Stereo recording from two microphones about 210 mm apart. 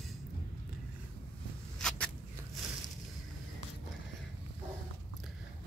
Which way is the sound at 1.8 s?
5° left (ahead or behind).